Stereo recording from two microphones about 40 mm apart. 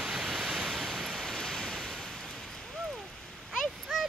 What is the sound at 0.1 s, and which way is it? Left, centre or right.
Waves, centre.